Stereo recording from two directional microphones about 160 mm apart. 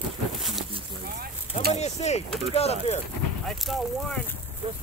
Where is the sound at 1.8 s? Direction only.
45° left (ahead or behind).